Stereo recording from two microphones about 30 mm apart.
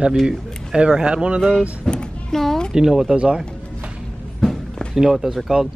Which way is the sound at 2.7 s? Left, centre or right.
Centre.